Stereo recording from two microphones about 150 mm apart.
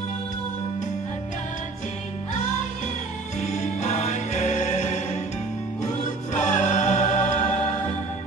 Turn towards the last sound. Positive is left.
turn(degrees=55)  # may be behind; listen again after turning